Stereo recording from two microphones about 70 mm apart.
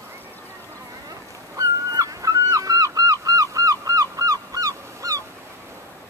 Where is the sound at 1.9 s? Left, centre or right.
Right.